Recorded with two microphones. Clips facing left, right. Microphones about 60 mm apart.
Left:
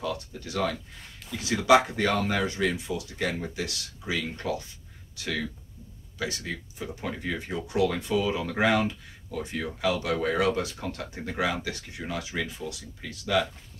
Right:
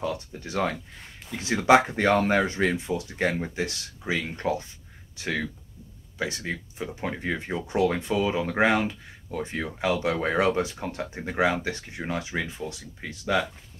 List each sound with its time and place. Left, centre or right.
0.0 s speech: right